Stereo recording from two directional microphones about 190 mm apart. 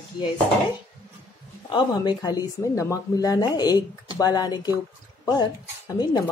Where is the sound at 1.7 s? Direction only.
25° left (ahead or behind).